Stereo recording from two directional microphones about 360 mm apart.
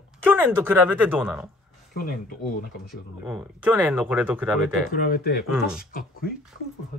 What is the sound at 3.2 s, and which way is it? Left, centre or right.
Speech, centre.